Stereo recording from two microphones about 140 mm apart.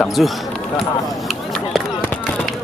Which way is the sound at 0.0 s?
Centre (ahead or behind).